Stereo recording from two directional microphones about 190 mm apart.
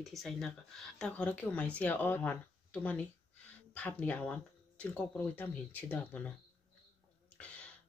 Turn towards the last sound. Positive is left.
turn(degrees=5)  # may be behind; listen again after turning